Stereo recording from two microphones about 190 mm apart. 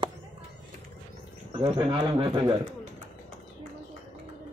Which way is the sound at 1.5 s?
25° right (ahead or behind).